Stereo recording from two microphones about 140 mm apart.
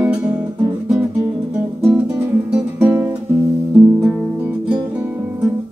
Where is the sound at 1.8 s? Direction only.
10° right (ahead or behind).